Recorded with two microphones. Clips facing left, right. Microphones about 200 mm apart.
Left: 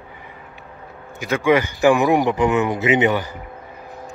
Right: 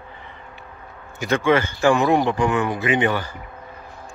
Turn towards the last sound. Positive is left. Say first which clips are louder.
# left 3 dB
turn(degrees=20)  # may be behind; listen again after turning